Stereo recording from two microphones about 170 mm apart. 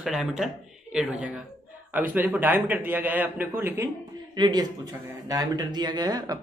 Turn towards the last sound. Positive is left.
turn(degrees=-25)  # may be behind; listen again after turning